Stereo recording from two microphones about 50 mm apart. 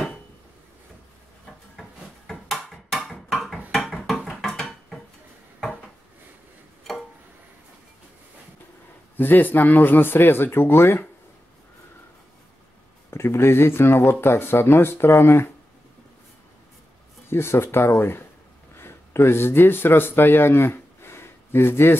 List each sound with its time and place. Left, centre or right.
1.8 s a sound: centre
9.1 s speech: left
13.1 s speech: left
17.3 s a man's voice: left